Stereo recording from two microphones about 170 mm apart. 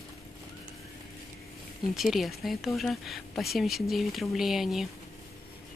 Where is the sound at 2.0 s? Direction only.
Centre (ahead or behind).